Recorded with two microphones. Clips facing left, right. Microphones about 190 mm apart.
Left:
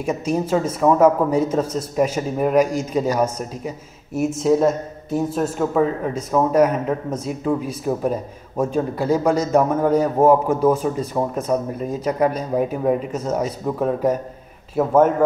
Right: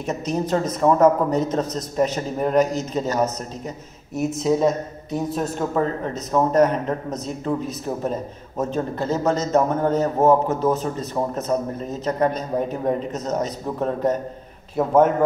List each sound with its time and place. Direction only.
0.0 s a man's voice: 10° left (ahead or behind)